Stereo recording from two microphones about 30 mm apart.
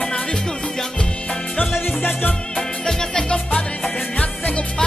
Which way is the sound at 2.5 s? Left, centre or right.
Left.